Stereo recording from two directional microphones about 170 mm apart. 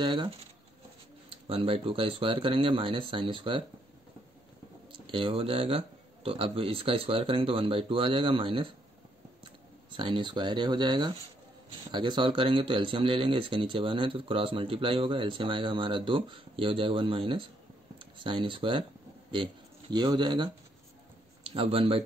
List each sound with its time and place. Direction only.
0.0 s speech: 30° right (ahead or behind)
1.3 s speech: 30° right (ahead or behind)
4.9 s speech: 30° right (ahead or behind)
21.5 s speech: 35° right (ahead or behind)